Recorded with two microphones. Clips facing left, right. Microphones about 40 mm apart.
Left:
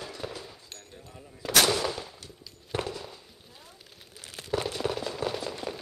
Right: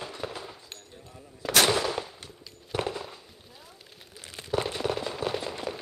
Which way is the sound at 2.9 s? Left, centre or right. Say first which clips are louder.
Right 2 dB; centre.